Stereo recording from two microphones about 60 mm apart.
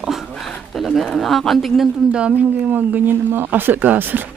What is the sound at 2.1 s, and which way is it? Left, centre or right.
Speech, centre.